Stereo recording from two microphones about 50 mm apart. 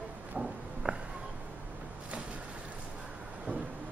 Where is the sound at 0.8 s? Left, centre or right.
Right.